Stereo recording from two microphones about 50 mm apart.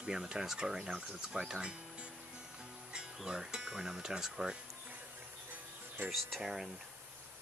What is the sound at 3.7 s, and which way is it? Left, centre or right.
Speech, centre.